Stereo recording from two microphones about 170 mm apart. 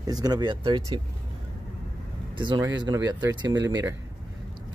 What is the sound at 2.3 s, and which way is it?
A man's voice, 30° right (ahead or behind).